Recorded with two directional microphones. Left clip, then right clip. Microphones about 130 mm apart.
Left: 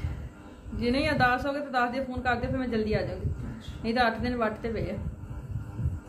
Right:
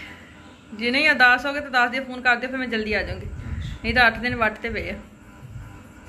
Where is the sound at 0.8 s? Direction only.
10° left (ahead or behind).